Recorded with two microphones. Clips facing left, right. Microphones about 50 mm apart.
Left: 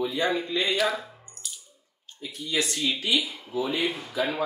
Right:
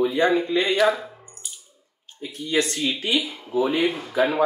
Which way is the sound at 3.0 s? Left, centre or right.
Right.